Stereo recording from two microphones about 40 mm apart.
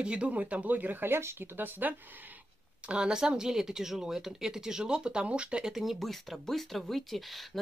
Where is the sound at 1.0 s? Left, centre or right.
Right.